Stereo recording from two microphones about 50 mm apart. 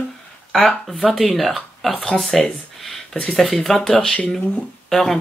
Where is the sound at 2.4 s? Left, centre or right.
Centre.